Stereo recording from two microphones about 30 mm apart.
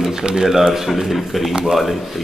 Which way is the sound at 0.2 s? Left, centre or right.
Right.